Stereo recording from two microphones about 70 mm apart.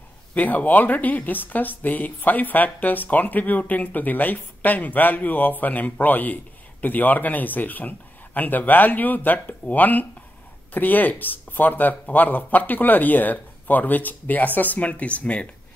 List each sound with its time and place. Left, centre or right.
0.3 s speech: left